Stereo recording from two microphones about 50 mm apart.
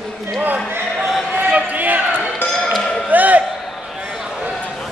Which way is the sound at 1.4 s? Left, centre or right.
Right.